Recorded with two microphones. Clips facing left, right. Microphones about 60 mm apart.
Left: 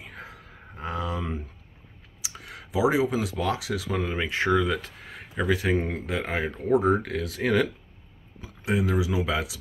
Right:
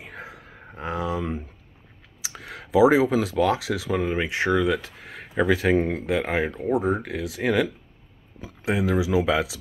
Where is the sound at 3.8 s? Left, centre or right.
Centre.